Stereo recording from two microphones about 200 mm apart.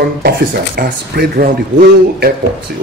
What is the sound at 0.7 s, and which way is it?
Speech, 45° right (ahead or behind).